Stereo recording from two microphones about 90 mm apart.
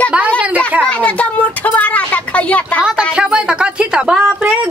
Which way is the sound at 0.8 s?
15° left (ahead or behind).